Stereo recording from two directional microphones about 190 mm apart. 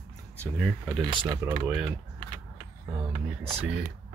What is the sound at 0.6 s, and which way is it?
Speech, centre (ahead or behind).